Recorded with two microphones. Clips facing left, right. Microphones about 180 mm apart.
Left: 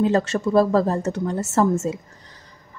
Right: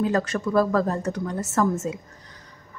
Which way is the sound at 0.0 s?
25° left (ahead or behind).